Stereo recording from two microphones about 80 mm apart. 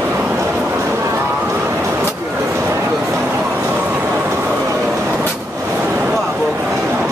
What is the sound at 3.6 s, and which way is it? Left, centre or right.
Vehicle, centre.